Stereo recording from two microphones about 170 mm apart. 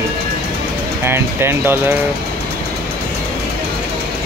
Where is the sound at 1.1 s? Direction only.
15° right (ahead or behind).